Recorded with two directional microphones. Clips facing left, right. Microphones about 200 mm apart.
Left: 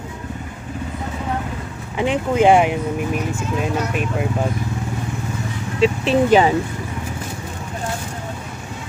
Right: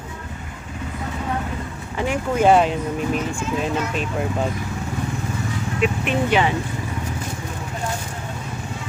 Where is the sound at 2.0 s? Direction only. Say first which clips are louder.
Left 3 dB; 15° left (ahead or behind).